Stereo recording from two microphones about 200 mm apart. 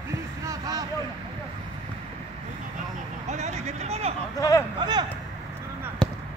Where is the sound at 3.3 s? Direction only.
35° right (ahead or behind).